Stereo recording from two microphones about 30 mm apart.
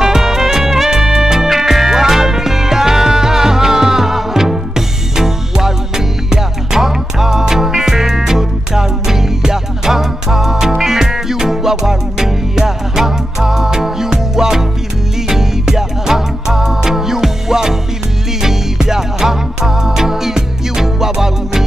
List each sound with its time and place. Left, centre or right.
0.0 s music: centre